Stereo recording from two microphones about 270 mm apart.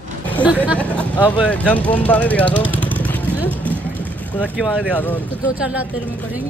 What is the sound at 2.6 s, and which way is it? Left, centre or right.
Vehicle, centre.